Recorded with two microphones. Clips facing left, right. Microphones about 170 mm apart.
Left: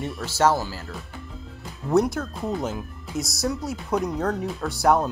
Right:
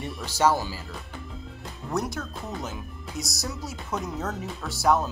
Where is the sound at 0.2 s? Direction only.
10° right (ahead or behind).